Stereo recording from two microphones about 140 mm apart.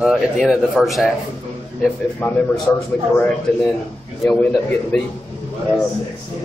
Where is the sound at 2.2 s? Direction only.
15° left (ahead or behind).